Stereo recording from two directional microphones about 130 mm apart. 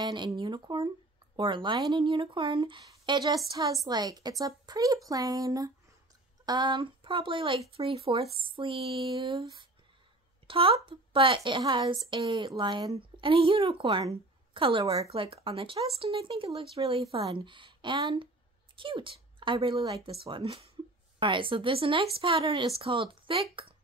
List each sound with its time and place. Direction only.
0.0 s a woman's voice: 35° right (ahead or behind)
10.4 s a woman's voice: 45° right (ahead or behind)
13.2 s a woman's voice: 45° right (ahead or behind)